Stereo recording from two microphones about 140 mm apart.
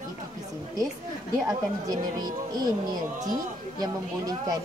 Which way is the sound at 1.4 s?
25° right (ahead or behind).